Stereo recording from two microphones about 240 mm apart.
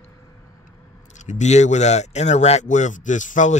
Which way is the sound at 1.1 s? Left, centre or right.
Left.